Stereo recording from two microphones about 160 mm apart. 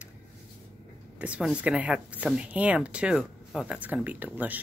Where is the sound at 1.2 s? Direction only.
5° right (ahead or behind).